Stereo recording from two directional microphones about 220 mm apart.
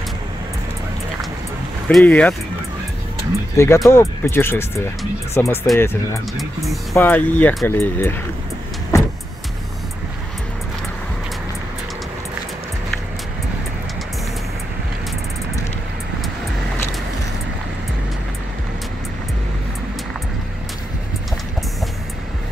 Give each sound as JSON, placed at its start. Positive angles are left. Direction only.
{"t": 1.9, "sound": "speech", "side_deg": 5}
{"t": 3.5, "sound": "speech", "side_deg": 10}